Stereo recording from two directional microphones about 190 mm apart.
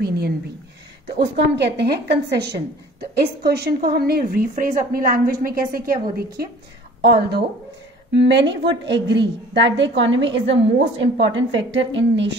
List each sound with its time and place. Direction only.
1.3 s a woman's voice: 65° right (ahead or behind)